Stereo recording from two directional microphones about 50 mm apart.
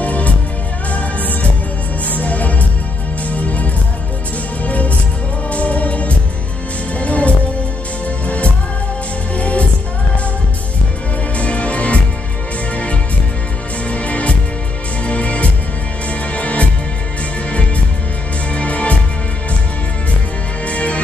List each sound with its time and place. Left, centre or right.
0.0 s music: left
4.6 s music: left
11.3 s music: left
13.8 s music: left
18.5 s music: left
20.6 s music: left